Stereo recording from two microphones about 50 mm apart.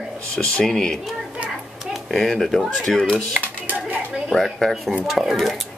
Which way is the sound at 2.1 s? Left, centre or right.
Centre.